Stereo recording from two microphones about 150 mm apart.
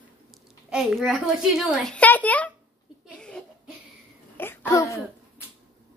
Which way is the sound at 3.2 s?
5° left (ahead or behind).